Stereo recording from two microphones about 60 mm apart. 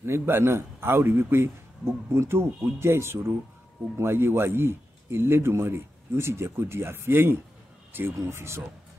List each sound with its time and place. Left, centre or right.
0.0 s a man's voice: right